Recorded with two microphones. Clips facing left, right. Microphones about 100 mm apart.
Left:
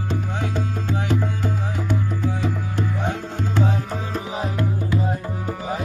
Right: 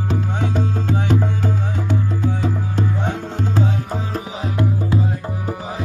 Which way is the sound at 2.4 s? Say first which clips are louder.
Right 3 dB; 20° right (ahead or behind).